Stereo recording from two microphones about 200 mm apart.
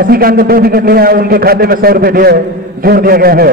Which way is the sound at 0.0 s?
45° right (ahead or behind).